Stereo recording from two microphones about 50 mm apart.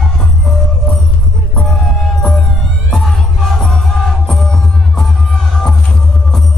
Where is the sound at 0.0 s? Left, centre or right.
Centre.